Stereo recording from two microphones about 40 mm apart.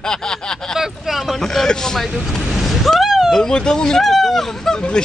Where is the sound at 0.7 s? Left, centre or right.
Centre.